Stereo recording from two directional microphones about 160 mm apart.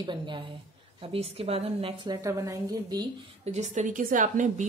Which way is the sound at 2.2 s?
20° right (ahead or behind).